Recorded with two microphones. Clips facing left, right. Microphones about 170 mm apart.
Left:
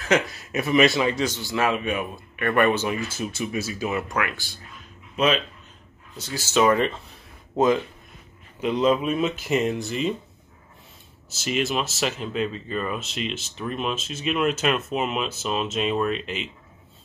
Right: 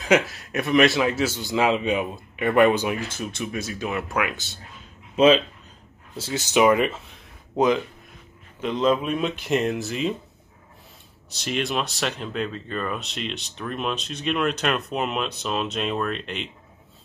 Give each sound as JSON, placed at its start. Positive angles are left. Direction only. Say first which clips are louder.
{"t": 0.2, "sound": "speech", "louder": "even", "side_deg": 0}
{"t": 1.4, "sound": "speech", "louder": "right 5 dB", "side_deg": -20}
{"t": 3.1, "sound": "speech", "louder": "left 1 dB", "side_deg": 5}
{"t": 4.2, "sound": "speech", "louder": "right 1 dB", "side_deg": -20}
{"t": 6.4, "sound": "speech", "louder": "right 1 dB", "side_deg": -15}
{"t": 7.1, "sound": "a sound", "louder": "left 1 dB", "side_deg": 0}
{"t": 8.5, "sound": "speech", "louder": "left 1 dB", "side_deg": 10}
{"t": 11.2, "sound": "speech", "louder": "left 1 dB", "side_deg": 5}